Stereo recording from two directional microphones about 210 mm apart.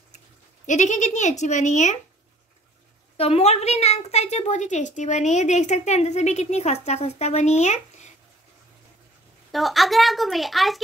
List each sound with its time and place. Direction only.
0.7 s a woman's voice: 35° left (ahead or behind)
3.2 s a woman's voice: 30° left (ahead or behind)
9.5 s a woman's voice: centre (ahead or behind)